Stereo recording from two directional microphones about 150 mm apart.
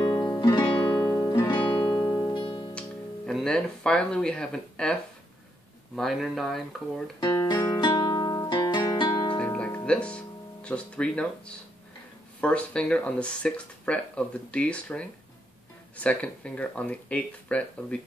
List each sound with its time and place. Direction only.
0.0 s music: 30° left (ahead or behind)
1.1 s music: 20° left (ahead or behind)
1.5 s music: 30° left (ahead or behind)
3.3 s speech: 5° left (ahead or behind)
5.9 s speech: centre (ahead or behind)
7.4 s music: 25° left (ahead or behind)
9.4 s music: 10° left (ahead or behind)
9.8 s speech: 5° left (ahead or behind)